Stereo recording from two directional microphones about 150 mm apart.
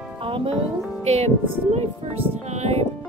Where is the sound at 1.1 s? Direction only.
45° right (ahead or behind).